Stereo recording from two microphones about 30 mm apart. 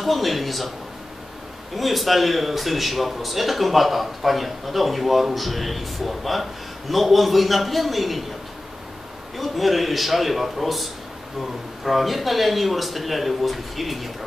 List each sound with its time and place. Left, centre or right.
0.0 s speech: centre
1.8 s speech: centre
9.4 s speech: centre